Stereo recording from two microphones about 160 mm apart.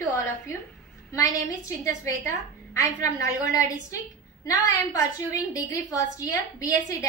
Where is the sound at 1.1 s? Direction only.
20° left (ahead or behind).